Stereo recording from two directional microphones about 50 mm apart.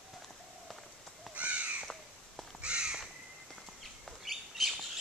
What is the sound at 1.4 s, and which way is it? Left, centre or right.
Crow, right.